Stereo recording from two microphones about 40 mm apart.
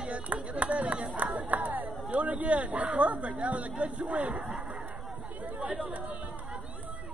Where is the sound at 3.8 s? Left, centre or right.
Right.